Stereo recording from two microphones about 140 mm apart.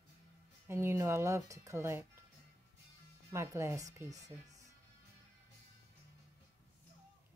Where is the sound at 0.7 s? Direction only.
15° right (ahead or behind).